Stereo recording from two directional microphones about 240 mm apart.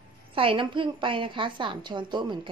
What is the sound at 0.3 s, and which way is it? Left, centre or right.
A woman's voice, right.